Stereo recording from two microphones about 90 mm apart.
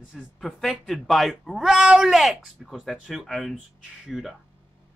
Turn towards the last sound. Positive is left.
turn(degrees=-5)  # may be behind; listen again after turning